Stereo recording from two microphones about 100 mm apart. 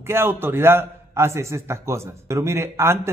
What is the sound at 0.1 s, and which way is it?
A man's voice, 25° right (ahead or behind).